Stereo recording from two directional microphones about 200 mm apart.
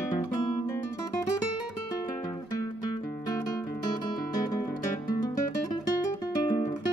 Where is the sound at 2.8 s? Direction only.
20° left (ahead or behind).